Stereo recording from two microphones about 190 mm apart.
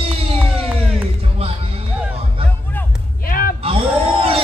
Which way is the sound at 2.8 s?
10° left (ahead or behind).